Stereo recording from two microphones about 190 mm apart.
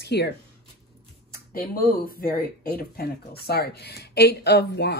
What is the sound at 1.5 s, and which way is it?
A woman's voice, 50° left (ahead or behind).